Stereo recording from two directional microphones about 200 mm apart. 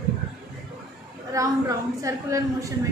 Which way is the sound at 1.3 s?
15° right (ahead or behind).